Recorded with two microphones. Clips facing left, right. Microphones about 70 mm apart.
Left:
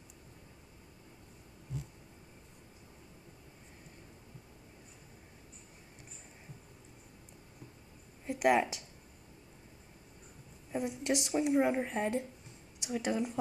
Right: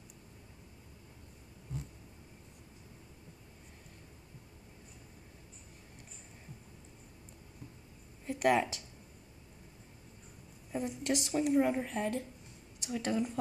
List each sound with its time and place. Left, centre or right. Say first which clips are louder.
8.3 s speech: left 1 dB; centre
10.7 s speech: left 1 dB; centre